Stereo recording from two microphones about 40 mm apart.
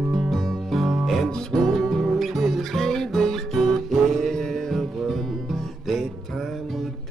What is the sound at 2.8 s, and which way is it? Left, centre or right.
Music, centre.